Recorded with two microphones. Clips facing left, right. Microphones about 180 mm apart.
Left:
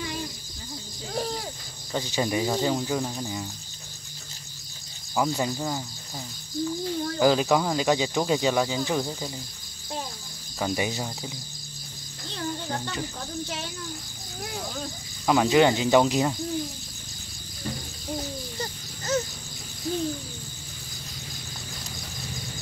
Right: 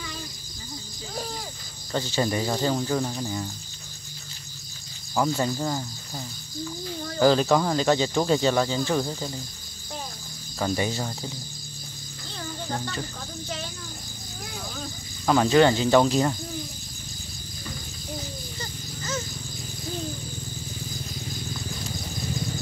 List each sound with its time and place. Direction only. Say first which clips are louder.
1.9 s speech: right 1 dB; 10° left (ahead or behind)
5.1 s speech: right 1 dB; 10° left (ahead or behind)
7.2 s speech: right 2 dB; 10° left (ahead or behind)
10.6 s speech: right 1 dB; 15° left (ahead or behind)
15.2 s speech: right 1 dB; 10° left (ahead or behind)
18.6 s a sound: left 2 dB; 35° left (ahead or behind)